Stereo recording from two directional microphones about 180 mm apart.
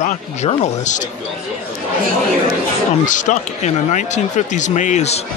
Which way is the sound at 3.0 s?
45° left (ahead or behind).